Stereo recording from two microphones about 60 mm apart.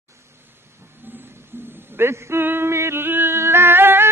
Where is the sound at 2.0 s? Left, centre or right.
Right.